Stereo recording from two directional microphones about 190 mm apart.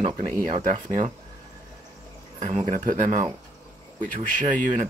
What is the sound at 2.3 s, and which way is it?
Speech, 40° right (ahead or behind).